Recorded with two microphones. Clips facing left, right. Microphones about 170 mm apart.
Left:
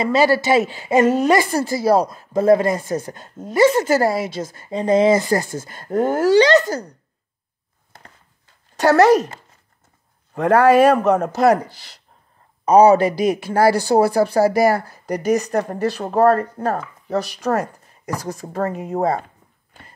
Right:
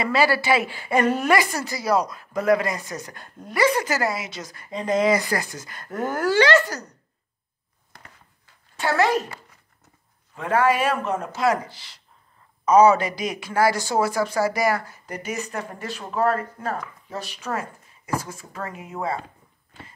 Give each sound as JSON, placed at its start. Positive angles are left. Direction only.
{"t": 0.2, "sound": "a woman's voice", "side_deg": 20}
{"t": 8.7, "sound": "speech", "side_deg": 40}
{"t": 10.4, "sound": "speech", "side_deg": 40}